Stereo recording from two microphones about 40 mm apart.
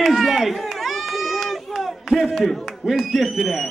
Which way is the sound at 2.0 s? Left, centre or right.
Centre.